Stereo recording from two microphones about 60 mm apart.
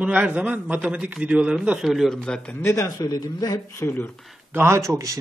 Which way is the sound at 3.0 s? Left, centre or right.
Left.